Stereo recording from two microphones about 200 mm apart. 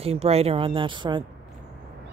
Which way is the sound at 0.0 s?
30° right (ahead or behind).